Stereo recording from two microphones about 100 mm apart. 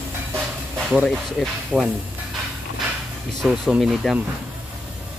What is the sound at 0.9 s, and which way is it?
Speech, 5° right (ahead or behind).